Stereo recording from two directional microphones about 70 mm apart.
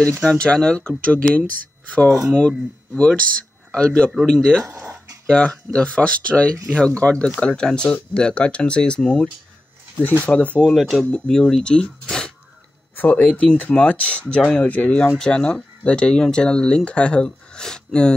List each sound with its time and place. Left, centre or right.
0.2 s speech: centre
4.6 s speech: right
5.2 s speech: centre
10.6 s speech: centre
12.9 s speech: left